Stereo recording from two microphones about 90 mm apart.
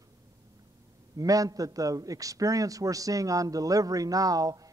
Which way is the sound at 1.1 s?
40° right (ahead or behind).